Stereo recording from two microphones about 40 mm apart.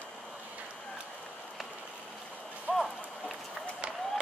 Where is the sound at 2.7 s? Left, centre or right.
Right.